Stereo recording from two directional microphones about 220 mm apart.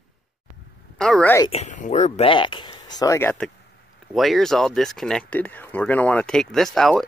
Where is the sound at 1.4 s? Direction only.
30° left (ahead or behind).